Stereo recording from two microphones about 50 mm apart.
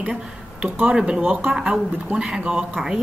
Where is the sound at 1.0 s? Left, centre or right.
Right.